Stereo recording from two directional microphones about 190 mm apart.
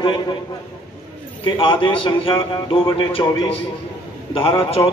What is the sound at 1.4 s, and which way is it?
A man's voice, 25° left (ahead or behind).